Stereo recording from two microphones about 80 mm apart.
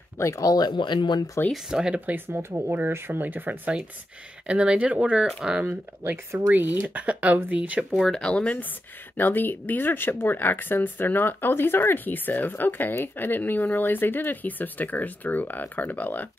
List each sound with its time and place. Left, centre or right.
0.2 s speech: left
1.5 s speech: centre
2.0 s speech: right; by 5.7 s centre
6.5 s speech: right
8.0 s speech: centre